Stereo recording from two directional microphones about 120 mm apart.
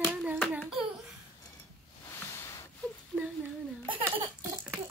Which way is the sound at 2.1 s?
20° left (ahead or behind).